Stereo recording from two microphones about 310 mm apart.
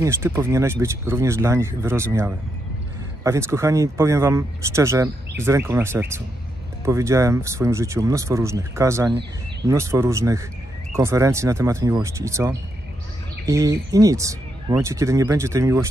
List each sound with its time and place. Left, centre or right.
0.0 s speech: centre